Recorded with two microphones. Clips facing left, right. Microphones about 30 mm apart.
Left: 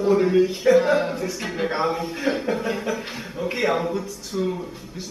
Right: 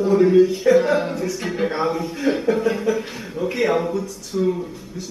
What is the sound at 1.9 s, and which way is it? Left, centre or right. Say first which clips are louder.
A man's voice: right 3 dB; centre.